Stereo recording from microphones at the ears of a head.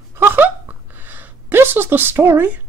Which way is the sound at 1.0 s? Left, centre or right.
Right.